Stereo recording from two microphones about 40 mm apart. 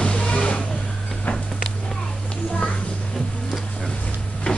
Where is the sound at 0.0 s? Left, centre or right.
Left.